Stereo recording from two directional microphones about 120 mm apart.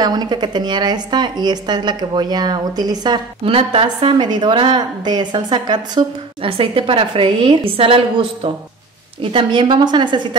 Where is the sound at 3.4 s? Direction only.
50° right (ahead or behind).